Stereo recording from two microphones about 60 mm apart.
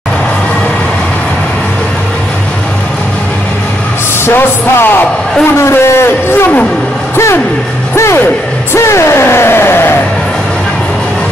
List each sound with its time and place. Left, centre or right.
4.3 s music: left
5.6 s speech: left
7.9 s music: left
8.7 s a sound: left